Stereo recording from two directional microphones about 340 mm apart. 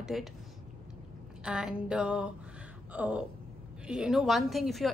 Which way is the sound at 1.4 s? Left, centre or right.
Centre.